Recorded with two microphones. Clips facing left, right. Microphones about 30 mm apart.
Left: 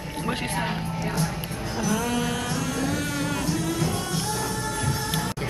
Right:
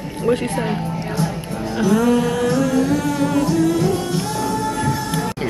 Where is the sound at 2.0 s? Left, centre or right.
Centre.